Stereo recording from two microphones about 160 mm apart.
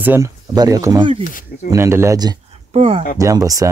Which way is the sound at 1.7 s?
15° right (ahead or behind).